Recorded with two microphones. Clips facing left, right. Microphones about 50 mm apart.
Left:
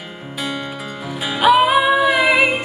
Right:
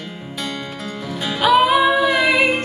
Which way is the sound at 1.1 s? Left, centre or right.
Centre.